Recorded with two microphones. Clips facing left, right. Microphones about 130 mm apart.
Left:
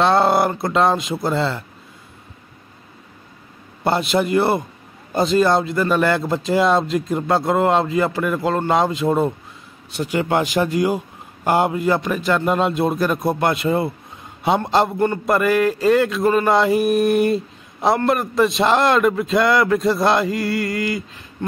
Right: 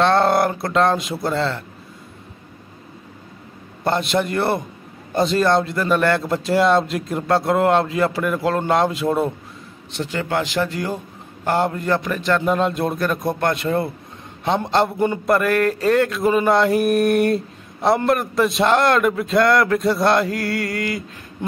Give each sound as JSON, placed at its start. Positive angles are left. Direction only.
{"t": 0.0, "sound": "mantra", "side_deg": 5}
{"t": 3.8, "sound": "mantra", "side_deg": 5}
{"t": 9.9, "sound": "speech", "side_deg": 15}
{"t": 11.4, "sound": "mantra", "side_deg": 15}